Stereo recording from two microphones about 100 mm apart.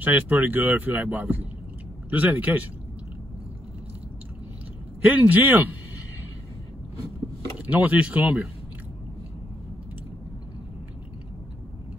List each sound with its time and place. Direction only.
0.0 s speech: 20° right (ahead or behind)
5.0 s speech: 20° right (ahead or behind)
7.5 s speech: 15° right (ahead or behind)